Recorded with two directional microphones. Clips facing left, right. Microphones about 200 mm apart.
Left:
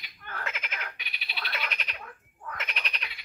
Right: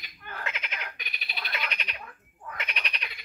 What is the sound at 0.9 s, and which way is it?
Frog, 45° right (ahead or behind).